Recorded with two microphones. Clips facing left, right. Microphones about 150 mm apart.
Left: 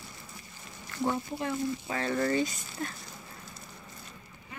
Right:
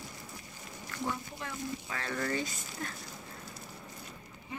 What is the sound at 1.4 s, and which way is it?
Speech, 25° left (ahead or behind).